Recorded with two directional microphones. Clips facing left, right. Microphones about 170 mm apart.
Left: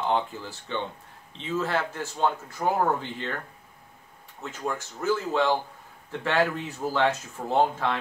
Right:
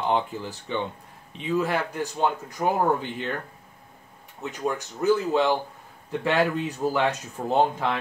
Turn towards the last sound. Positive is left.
turn(degrees=-15)  # may be behind; listen again after turning